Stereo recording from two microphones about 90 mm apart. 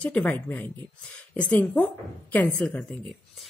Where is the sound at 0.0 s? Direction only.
15° left (ahead or behind).